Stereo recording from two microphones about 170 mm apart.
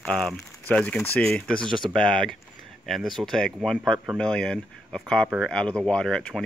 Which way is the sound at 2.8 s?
Centre (ahead or behind).